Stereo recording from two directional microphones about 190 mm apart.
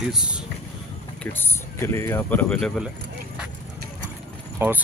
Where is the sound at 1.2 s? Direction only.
10° left (ahead or behind).